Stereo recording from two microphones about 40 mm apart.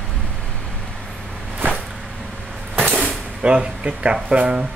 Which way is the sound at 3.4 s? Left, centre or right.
Right.